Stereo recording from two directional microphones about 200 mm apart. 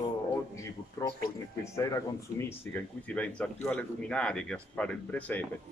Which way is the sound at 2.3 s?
10° left (ahead or behind).